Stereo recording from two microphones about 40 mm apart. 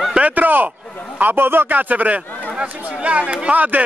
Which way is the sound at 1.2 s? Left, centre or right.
Right.